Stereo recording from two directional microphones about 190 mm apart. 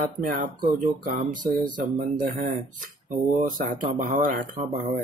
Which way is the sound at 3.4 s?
45° right (ahead or behind).